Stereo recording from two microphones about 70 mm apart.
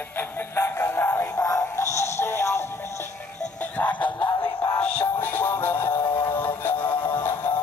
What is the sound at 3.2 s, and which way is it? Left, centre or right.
Music, left.